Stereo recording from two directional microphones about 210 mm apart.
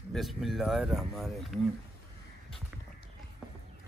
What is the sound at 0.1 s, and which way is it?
Speech, centre (ahead or behind).